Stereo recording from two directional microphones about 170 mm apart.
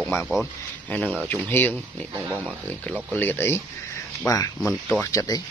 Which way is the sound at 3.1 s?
10° left (ahead or behind).